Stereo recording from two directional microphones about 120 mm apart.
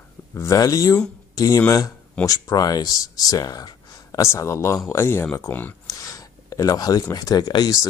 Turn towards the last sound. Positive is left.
turn(degrees=30)  # may be behind; listen again after turning